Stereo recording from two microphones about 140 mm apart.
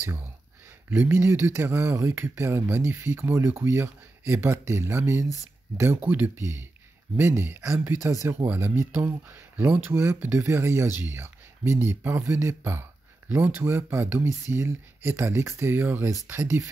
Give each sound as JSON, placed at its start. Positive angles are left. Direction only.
{"t": 0.8, "sound": "speech", "side_deg": -15}